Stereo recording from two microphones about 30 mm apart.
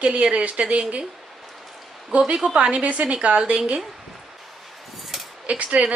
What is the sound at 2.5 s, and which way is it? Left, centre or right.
Speech, right.